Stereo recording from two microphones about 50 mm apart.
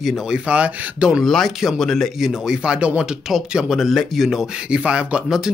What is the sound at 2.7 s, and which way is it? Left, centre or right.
Speech, right.